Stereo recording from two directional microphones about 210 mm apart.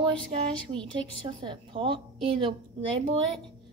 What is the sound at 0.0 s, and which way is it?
Speech, 25° right (ahead or behind).